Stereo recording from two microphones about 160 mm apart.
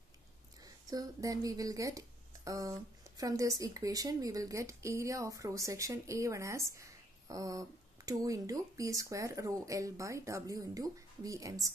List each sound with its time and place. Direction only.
0.8 s speech: 20° right (ahead or behind)